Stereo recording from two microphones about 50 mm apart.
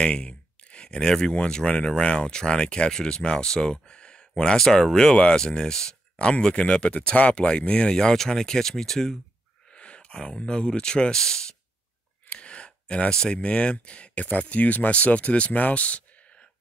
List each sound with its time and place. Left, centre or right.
0.0 s speech: centre
9.7 s speech: left
12.3 s a sound: left
13.1 s speech: centre